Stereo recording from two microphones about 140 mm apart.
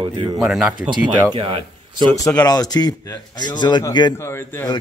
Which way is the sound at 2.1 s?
25° left (ahead or behind).